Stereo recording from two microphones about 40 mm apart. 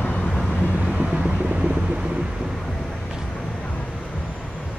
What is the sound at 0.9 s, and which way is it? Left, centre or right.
Vehicle, right.